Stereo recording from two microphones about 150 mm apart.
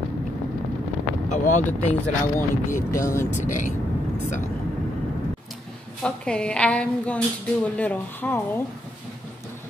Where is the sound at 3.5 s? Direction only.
60° left (ahead or behind).